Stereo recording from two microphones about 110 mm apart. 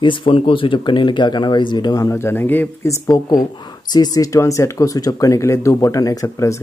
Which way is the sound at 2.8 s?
35° left (ahead or behind).